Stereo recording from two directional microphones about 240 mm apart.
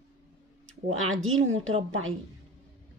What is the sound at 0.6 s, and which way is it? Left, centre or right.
Speech, right.